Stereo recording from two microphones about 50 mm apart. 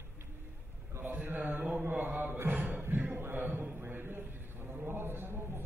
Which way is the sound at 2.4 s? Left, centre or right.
Right.